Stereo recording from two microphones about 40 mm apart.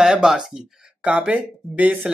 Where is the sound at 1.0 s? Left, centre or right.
Right.